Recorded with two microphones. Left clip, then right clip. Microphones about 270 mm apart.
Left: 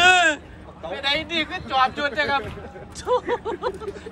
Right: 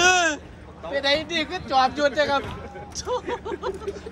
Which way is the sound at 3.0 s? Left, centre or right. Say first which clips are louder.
Left 5 dB; centre.